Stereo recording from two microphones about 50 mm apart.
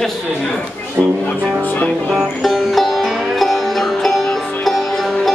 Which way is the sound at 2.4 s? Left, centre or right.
Centre.